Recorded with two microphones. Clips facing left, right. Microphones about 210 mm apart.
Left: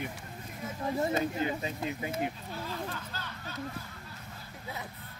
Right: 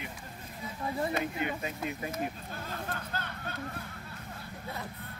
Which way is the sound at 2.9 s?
55° right (ahead or behind).